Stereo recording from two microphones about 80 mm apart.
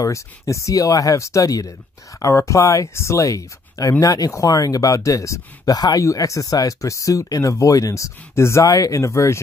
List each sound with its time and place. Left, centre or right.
0.0 s speech: left